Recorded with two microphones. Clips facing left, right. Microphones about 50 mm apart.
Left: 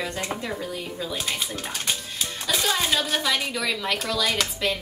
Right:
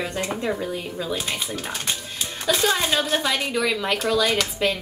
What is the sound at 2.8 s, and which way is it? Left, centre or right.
Speech, centre.